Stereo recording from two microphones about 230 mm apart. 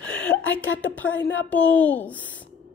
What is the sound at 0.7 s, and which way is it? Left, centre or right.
A woman's voice, centre.